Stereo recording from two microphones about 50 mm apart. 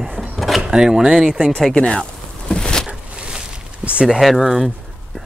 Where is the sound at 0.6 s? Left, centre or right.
Centre.